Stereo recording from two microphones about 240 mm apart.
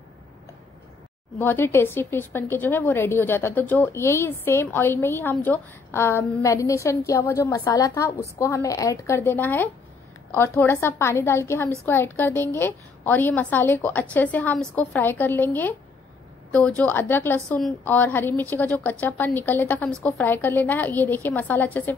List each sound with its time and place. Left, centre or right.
1.4 s a woman's voice: centre